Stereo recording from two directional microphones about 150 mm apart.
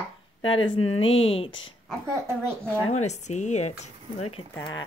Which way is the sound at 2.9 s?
50° left (ahead or behind).